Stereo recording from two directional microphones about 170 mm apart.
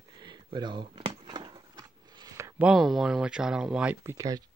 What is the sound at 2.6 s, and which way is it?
Speech, centre (ahead or behind).